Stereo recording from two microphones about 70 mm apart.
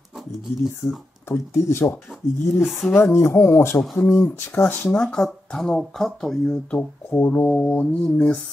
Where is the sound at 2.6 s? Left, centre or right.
Centre.